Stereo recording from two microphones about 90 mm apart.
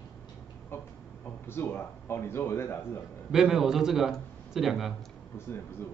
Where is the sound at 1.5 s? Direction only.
25° left (ahead or behind).